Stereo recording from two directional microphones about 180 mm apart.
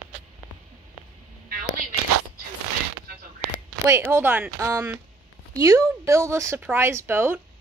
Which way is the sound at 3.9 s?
15° right (ahead or behind).